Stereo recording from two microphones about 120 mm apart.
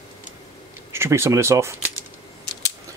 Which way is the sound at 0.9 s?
20° right (ahead or behind).